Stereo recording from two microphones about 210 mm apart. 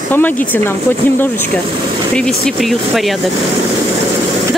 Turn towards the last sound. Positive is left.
turn(degrees=0)  # may be behind; listen again after turning